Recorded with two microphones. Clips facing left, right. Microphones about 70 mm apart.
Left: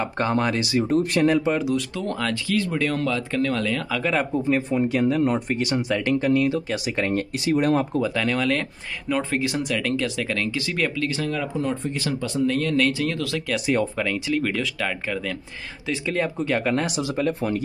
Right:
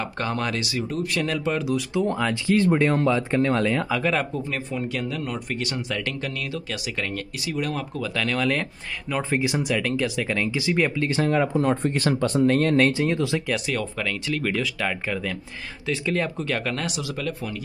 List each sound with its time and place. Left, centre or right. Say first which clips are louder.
0.0 s speech: left 4 dB; centre
0.7 s speech: left 6 dB; left
1.2 s speech: left 7 dB; centre
1.5 s speech: left 2 dB; centre
2.0 s speech: right 3 dB; centre
2.4 s speech: right 6 dB; right
3.9 s speech: even; centre
4.5 s speech: left 7 dB; left
5.6 s speech: left 5 dB; centre; by 8.0 s left
8.0 s speech: left 2 dB; centre
9.1 s speech: even; centre
11.0 s speech: right 4 dB; right
13.9 s speech: left 3 dB; centre; by 17.6 s left